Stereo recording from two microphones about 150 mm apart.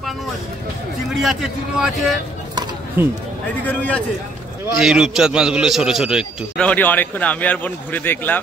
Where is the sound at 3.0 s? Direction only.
15° right (ahead or behind).